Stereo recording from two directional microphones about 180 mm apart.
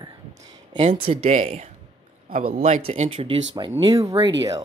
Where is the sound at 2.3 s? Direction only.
50° right (ahead or behind).